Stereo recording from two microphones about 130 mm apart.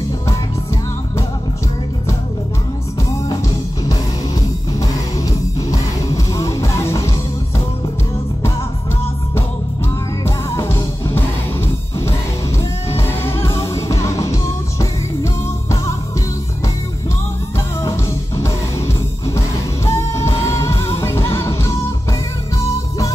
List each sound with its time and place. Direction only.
5.7 s music: 25° left (ahead or behind)
10.2 s music: 20° left (ahead or behind)
12.9 s music: 20° left (ahead or behind)
19.3 s music: 25° left (ahead or behind)